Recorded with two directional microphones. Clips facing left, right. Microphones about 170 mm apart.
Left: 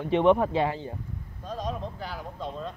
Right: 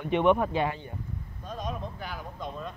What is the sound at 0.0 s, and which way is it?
Speech, 30° left (ahead or behind).